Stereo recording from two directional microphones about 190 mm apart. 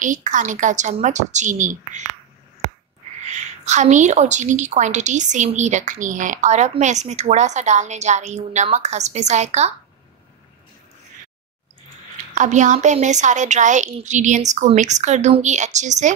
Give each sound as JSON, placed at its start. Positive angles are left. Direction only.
{"t": 0.0, "sound": "a woman's voice", "side_deg": -40}
{"t": 3.3, "sound": "a woman's voice", "side_deg": -40}
{"t": 12.4, "sound": "a woman's voice", "side_deg": -40}